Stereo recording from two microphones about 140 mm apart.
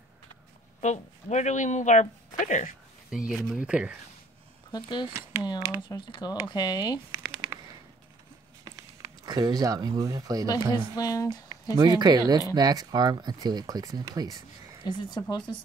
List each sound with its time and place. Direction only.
0.7 s speech: 55° left (ahead or behind)
3.3 s speech: 5° left (ahead or behind)
3.5 s speech: 5° right (ahead or behind)
4.7 s speech: 35° left (ahead or behind)
8.6 s speech: 25° right (ahead or behind)
11.0 s speech: 25° left (ahead or behind)
11.6 s speech: 25° right (ahead or behind)
14.9 s speech: 35° left (ahead or behind)